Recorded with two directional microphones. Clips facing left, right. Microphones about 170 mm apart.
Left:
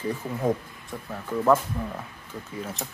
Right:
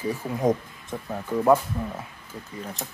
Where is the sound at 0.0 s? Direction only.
10° right (ahead or behind).